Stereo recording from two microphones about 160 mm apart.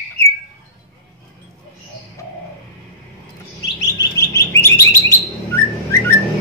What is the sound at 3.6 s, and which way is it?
Chirp, 25° left (ahead or behind).